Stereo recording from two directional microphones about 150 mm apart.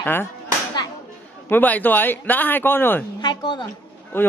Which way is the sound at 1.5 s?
10° left (ahead or behind).